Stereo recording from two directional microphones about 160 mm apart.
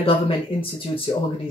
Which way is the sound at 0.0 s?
35° left (ahead or behind).